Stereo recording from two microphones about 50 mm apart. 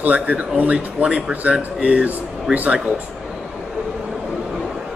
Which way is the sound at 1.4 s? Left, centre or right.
Right.